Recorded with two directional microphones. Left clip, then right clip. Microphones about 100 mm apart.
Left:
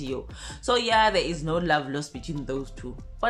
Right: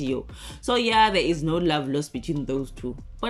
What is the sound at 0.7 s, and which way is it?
Speech, 30° right (ahead or behind).